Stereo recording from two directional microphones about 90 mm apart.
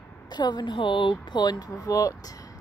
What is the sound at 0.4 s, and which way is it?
Speech, 55° left (ahead or behind).